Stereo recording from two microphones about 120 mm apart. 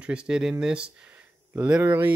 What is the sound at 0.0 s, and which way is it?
Speech, 10° right (ahead or behind).